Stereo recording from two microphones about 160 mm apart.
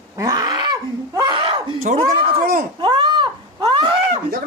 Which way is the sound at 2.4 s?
60° right (ahead or behind).